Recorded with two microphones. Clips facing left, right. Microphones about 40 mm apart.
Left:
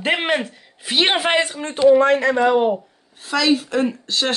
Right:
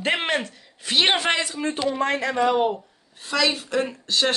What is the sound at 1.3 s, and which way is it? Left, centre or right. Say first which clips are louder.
Speech: left 5 dB; left.